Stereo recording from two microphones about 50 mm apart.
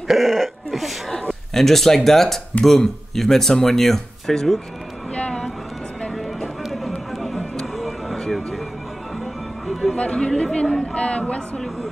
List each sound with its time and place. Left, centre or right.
0.1 s speech: centre
5.1 s vehicle: centre
6.1 s a sound: centre
9.2 s music: centre
9.9 s speech: centre